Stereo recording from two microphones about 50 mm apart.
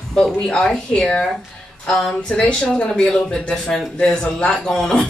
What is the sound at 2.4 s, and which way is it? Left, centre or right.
Speech, centre.